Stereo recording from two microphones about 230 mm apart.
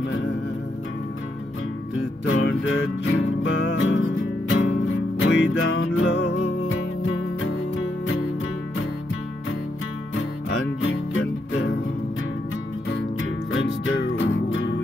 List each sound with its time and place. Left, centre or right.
2.0 s music: left
10.5 s music: left
14.1 s music: left